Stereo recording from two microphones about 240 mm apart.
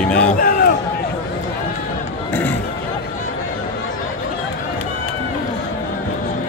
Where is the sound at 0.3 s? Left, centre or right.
Left.